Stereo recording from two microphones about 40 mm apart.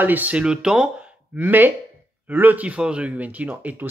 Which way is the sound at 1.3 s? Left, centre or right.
Right.